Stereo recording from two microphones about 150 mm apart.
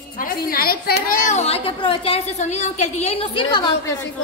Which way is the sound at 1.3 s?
45° left (ahead or behind).